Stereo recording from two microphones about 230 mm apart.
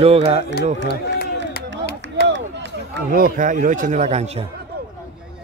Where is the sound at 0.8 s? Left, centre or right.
Left.